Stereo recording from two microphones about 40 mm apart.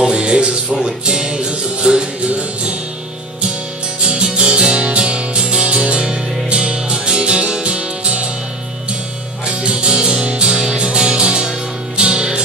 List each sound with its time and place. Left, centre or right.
0.0 s music: right
4.0 s music: right
9.6 s music: right